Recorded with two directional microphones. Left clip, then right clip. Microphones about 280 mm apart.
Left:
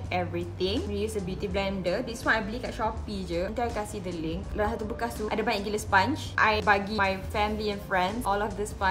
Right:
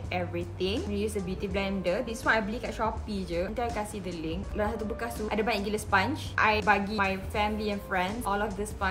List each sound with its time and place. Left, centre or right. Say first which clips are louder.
0.1 s a woman's voice: left 2 dB; centre